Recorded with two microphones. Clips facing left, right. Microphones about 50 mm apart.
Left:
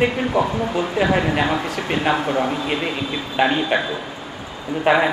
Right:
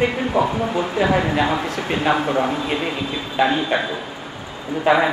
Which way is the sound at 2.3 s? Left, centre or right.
Centre.